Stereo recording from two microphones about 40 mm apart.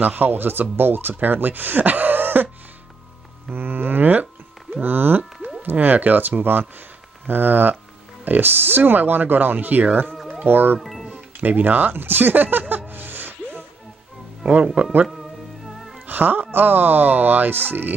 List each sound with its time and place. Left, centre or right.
0.0 s speech: right
3.4 s a sound: right
4.8 s a sound: right
5.6 s speech: right
10.8 s music: centre
11.4 s speech: right
11.9 s a sound: right
14.4 s speech: right
15.0 s music: centre
16.1 s speech: right